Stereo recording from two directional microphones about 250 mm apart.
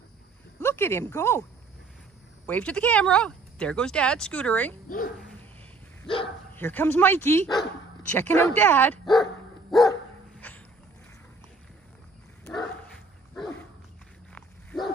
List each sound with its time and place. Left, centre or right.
0.6 s a sound: centre
1.1 s speech: centre
2.4 s speech: centre
4.8 s speech: left
6.5 s speech: centre
9.7 s dog: centre
10.4 s a sound: centre
13.3 s dog: centre